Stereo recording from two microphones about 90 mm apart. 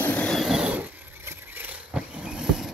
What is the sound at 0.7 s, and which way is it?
Vehicle, 20° right (ahead or behind).